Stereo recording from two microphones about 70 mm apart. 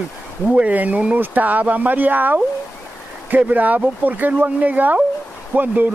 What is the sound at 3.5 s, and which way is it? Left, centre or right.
Speech, right.